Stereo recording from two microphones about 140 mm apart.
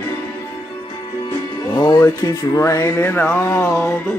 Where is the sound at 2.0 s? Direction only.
20° left (ahead or behind).